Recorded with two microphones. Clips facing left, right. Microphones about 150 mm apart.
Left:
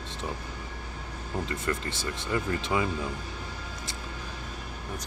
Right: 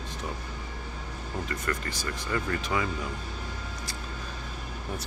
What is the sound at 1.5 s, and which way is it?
Speech, 25° left (ahead or behind).